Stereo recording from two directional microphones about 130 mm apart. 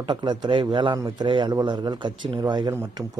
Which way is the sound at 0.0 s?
40° right (ahead or behind).